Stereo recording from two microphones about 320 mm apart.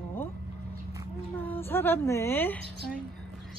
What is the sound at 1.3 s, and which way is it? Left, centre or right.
A woman's voice, centre.